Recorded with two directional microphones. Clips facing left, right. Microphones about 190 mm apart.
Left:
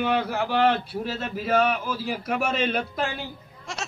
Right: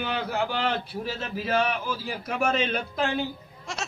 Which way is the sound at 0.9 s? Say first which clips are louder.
Left 2 dB; centre (ahead or behind).